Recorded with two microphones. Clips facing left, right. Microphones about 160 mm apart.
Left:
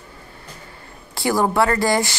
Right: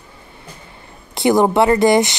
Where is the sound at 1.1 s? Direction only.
20° right (ahead or behind).